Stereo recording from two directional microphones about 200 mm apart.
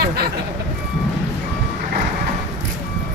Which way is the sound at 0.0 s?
50° right (ahead or behind).